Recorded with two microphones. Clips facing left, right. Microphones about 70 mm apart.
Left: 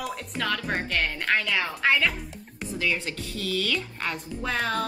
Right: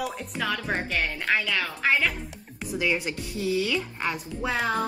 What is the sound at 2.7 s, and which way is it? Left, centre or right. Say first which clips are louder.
A woman's voice: right 2 dB; centre.